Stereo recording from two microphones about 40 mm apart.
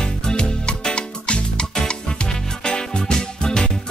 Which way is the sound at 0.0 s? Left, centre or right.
Left.